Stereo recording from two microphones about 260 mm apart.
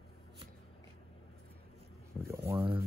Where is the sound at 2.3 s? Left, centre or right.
Centre.